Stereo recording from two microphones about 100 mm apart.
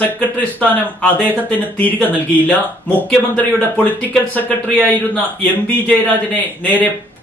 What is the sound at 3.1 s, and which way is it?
A man's voice, 15° left (ahead or behind).